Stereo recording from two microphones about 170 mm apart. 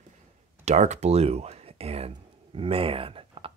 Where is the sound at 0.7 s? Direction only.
40° right (ahead or behind).